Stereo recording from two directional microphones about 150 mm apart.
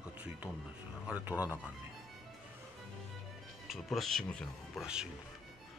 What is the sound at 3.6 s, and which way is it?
Speech, centre (ahead or behind).